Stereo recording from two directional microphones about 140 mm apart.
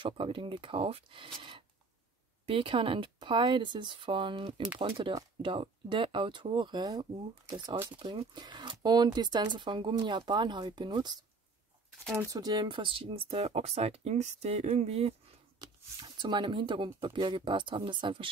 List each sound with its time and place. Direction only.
0.0 s speech: 40° right (ahead or behind)
12.2 s speech: 25° right (ahead or behind); by 15.1 s 45° right (ahead or behind)
15.6 s speech: 30° right (ahead or behind)